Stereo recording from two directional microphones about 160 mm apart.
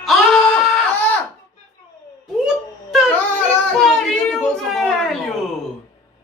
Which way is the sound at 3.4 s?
Centre (ahead or behind).